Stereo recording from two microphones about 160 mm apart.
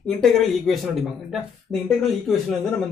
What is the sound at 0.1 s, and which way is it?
Speech, centre (ahead or behind).